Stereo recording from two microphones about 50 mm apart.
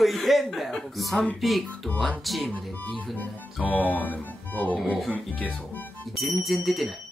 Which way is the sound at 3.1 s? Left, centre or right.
Left.